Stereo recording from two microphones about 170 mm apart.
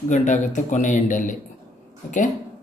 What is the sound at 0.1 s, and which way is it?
Speech, 45° left (ahead or behind).